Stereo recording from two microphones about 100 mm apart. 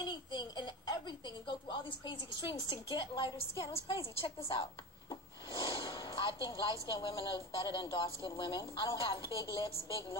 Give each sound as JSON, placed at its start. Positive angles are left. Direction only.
{"t": 0.0, "sound": "a sound", "side_deg": 50}
{"t": 3.3, "sound": "a woman's voice", "side_deg": 70}
{"t": 5.1, "sound": "a woman's voice", "side_deg": 60}